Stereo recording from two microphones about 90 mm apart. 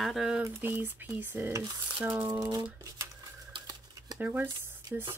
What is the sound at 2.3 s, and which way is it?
Speech, 45° right (ahead or behind).